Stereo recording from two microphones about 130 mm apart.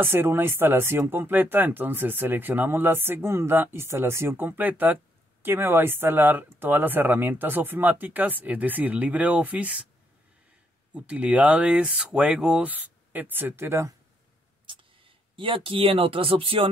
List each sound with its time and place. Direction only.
0.0 s speech: 15° right (ahead or behind)
11.0 s speech: 10° right (ahead or behind)
14.7 s speech: 40° right (ahead or behind)